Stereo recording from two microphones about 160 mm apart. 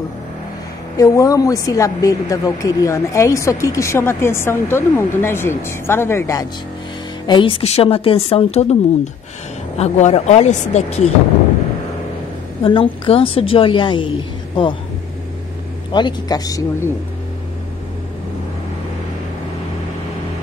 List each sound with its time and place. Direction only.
0.9 s a woman's voice: 20° left (ahead or behind)
7.2 s a woman's voice: 30° left (ahead or behind)
12.6 s a woman's voice: 35° left (ahead or behind)
15.9 s a woman's voice: 30° left (ahead or behind)